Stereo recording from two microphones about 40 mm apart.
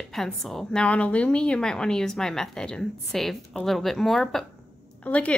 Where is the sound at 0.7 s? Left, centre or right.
Left; by 4.4 s centre.